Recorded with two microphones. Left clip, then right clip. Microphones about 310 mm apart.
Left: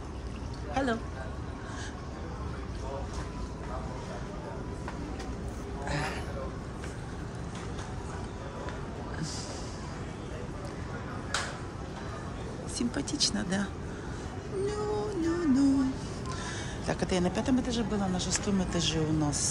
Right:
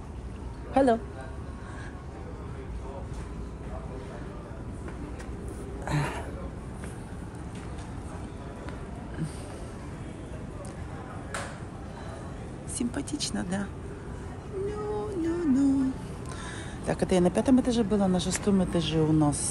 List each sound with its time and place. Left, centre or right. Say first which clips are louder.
5.9 s a sound: right 2 dB; centre
12.7 s speech: even; centre
14.7 s music: even; centre
16.8 s speech: right 5 dB; centre